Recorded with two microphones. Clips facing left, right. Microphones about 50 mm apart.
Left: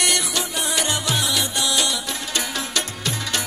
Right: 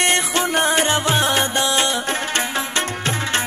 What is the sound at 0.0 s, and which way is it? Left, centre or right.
Music, right.